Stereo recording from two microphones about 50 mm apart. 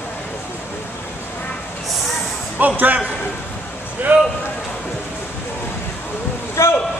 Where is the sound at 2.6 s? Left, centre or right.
Right.